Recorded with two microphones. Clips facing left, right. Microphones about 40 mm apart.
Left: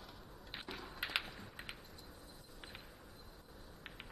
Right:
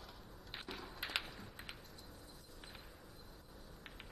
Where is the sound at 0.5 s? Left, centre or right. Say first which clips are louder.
Left 1 dB; centre.